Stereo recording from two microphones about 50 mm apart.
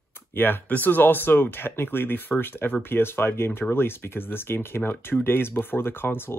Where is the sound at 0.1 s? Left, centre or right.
Left.